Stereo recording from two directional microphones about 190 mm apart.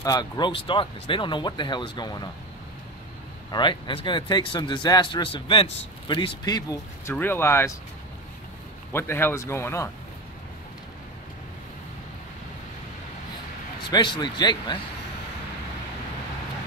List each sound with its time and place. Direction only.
0.0 s speech: 20° left (ahead or behind)
3.5 s speech: 25° left (ahead or behind)
8.9 s speech: 10° left (ahead or behind)
13.8 s speech: 25° left (ahead or behind)